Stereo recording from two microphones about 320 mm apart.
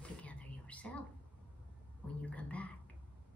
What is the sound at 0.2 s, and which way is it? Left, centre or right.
Whispering, centre.